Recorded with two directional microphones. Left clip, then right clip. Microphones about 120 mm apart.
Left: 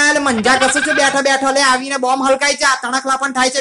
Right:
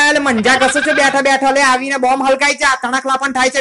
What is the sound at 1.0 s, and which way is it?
Speech, 20° right (ahead or behind).